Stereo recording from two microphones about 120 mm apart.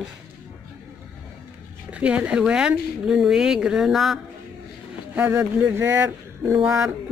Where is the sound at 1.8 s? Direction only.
10° right (ahead or behind).